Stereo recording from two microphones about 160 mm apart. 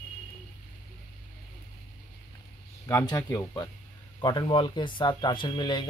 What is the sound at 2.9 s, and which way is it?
Speech, 20° left (ahead or behind).